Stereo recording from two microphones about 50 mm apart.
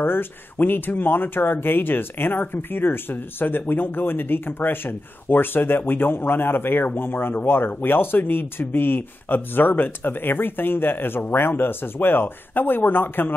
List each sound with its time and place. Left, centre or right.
0.0 s speech: left